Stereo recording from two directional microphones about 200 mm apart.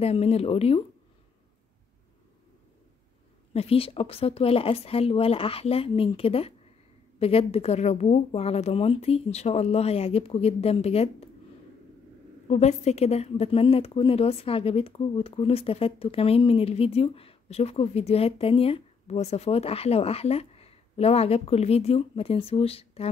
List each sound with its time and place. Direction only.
0.0 s speech: 30° left (ahead or behind)
3.5 s a woman's voice: 30° left (ahead or behind)
12.4 s a woman's voice: 35° left (ahead or behind)